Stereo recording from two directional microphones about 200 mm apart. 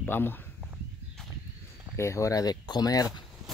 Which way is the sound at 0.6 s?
5° right (ahead or behind).